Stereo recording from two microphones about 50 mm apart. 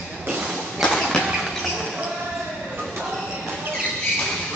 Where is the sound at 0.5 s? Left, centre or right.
Centre.